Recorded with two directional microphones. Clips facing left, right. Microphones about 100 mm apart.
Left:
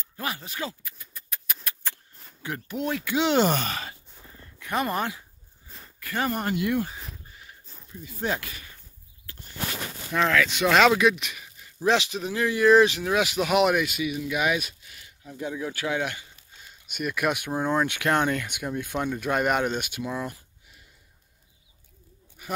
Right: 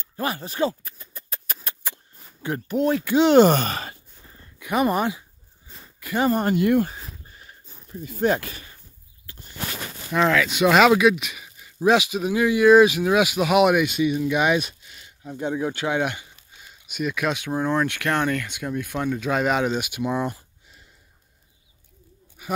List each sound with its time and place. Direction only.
0.2 s a sound: 35° right (ahead or behind)
1.8 s a sound: 10° right (ahead or behind)
2.4 s speech: 35° right (ahead or behind)
4.6 s a sound: 10° right (ahead or behind)
4.8 s speech: 15° right (ahead or behind)
6.3 s speech: 40° right (ahead or behind)
8.0 s speech: 50° right (ahead or behind)
8.4 s speech: 35° right (ahead or behind)
9.2 s a sound: 25° right (ahead or behind)
10.1 s speech: 10° right (ahead or behind)
13.8 s speech: 30° right (ahead or behind)
16.8 s speech: centre (ahead or behind); by 19.1 s 15° left (ahead or behind)
19.1 s speech: 5° left (ahead or behind)
19.9 s speech: 20° right (ahead or behind)